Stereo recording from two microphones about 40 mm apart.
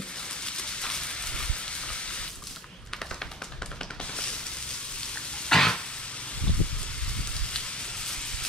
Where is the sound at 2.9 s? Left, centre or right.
Centre.